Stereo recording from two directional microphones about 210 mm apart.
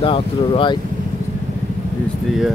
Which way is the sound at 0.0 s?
25° left (ahead or behind).